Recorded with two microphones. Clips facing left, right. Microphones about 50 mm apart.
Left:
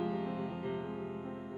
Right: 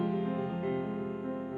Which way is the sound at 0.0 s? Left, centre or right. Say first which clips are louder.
Right 4 dB; right.